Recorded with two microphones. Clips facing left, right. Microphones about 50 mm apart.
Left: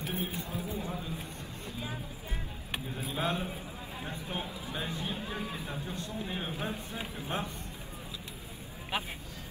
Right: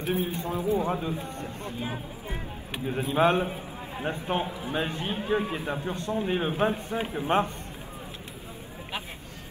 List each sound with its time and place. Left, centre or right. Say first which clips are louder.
0.0 s speech: right 8 dB; right
1.4 s speech: right 7 dB; right
2.9 s a man's voice: right 11 dB; right
4.5 s a man's voice: right 7 dB; right
4.7 s a man's voice: right 7 dB; right